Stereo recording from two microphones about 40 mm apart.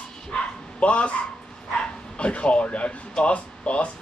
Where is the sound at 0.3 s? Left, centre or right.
Left.